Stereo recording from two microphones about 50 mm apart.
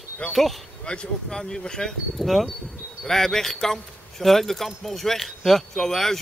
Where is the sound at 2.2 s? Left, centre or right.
Centre.